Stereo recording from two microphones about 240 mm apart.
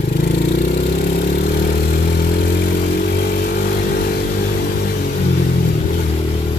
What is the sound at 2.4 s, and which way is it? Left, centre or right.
Motorcycle, left.